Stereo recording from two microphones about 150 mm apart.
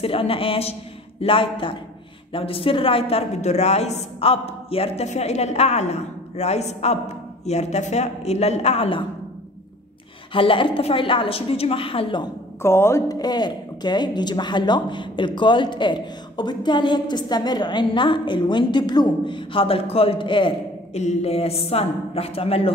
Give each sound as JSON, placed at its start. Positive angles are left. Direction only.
{"t": 0.0, "sound": "a woman's voice", "side_deg": 40}
{"t": 10.3, "sound": "speech", "side_deg": 35}
{"t": 12.6, "sound": "speech", "side_deg": 15}
{"t": 21.0, "sound": "speech", "side_deg": 45}